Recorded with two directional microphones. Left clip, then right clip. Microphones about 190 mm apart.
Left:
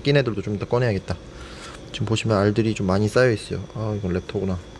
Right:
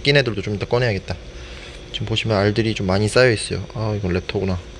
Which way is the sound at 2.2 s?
15° left (ahead or behind).